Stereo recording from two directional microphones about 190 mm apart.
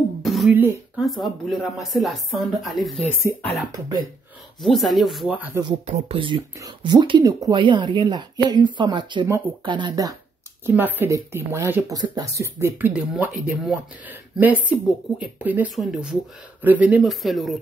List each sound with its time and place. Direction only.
0.2 s beatboxing: centre (ahead or behind)
1.0 s speech: centre (ahead or behind)
4.6 s speech: centre (ahead or behind)
5.9 s speech: 35° right (ahead or behind)
10.6 s speech: 10° right (ahead or behind)